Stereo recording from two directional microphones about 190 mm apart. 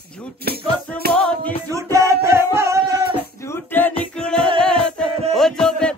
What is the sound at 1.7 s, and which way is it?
Music, 15° right (ahead or behind).